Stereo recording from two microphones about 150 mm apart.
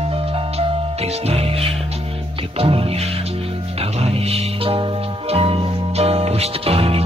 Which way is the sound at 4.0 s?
40° right (ahead or behind).